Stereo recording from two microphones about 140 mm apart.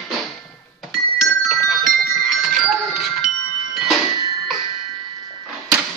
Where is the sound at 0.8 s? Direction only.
Centre (ahead or behind).